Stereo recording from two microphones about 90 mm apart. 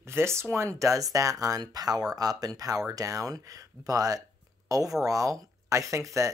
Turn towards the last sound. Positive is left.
turn(degrees=-35)  # may be behind; listen again after turning